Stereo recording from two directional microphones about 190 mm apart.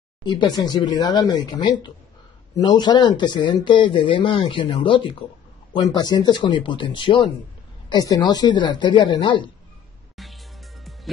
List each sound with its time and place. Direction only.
0.2 s speech: 20° left (ahead or behind)
10.1 s music: centre (ahead or behind)